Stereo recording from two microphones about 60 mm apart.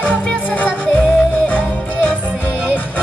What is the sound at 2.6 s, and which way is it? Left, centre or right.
Music, left.